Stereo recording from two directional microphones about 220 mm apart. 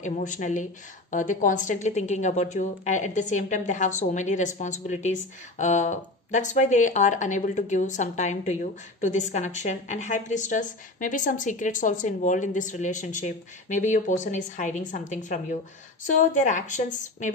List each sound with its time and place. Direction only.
0.0 s a woman's voice: 35° left (ahead or behind)